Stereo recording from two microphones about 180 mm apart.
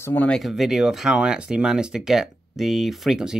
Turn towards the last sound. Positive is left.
turn(degrees=0)  # may be behind; listen again after turning